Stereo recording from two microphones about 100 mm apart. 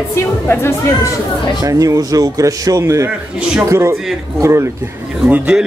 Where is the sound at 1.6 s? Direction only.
35° right (ahead or behind).